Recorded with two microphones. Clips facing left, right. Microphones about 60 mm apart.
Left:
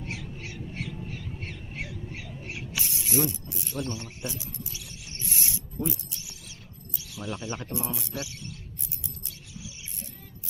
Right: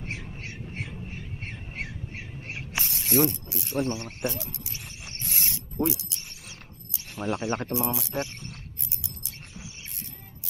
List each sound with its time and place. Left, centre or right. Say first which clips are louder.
0.0 s squawk: even; right
2.8 s pulleys: right 5 dB; right
3.7 s speech: right 6 dB; right
4.3 s speech: right 3 dB; right
4.7 s a sound: right 2 dB; right
5.3 s mechanisms: right 1 dB; right
7.0 s speech: right 6 dB; right
7.7 s speech: right 5 dB; right
8.1 s speech: right 5 dB; right
8.8 s a sound: even; right